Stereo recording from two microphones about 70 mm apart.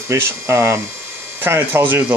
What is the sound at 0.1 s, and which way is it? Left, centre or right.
Speech, right.